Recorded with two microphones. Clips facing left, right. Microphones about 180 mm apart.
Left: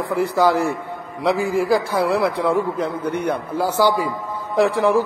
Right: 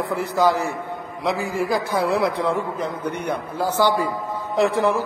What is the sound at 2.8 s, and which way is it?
Speech, 60° left (ahead or behind).